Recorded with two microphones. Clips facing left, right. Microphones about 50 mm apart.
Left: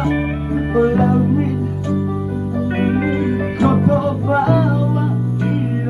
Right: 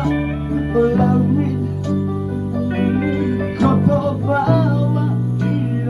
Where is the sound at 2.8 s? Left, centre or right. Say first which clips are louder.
Left 1 dB; centre.